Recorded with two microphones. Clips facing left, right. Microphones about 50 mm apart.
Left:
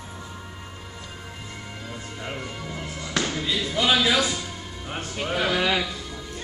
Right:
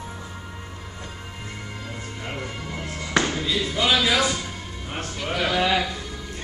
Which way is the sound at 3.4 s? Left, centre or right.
Centre.